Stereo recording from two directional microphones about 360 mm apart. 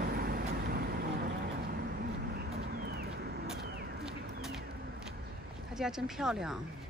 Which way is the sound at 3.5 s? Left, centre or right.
Right.